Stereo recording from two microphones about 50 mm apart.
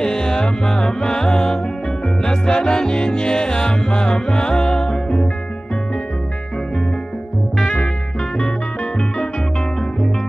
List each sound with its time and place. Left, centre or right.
0.0 s music: centre
7.6 s music: left